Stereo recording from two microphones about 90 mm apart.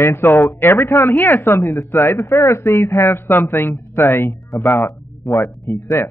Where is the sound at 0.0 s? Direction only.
30° left (ahead or behind).